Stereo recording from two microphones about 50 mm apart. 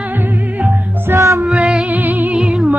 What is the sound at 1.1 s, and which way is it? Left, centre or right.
Music, right.